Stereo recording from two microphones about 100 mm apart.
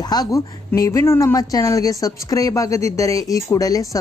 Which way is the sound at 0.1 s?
35° left (ahead or behind).